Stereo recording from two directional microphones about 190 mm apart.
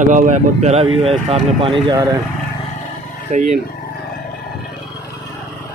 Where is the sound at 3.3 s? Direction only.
40° right (ahead or behind).